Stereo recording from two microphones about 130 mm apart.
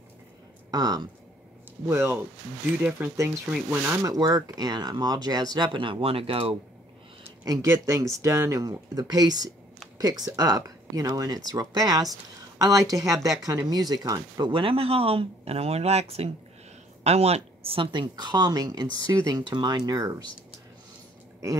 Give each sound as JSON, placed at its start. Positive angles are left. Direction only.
{"t": 0.7, "sound": "speech", "side_deg": -30}
{"t": 7.4, "sound": "speech", "side_deg": -25}